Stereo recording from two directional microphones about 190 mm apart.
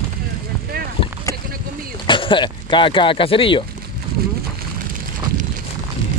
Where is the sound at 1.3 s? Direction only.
15° left (ahead or behind).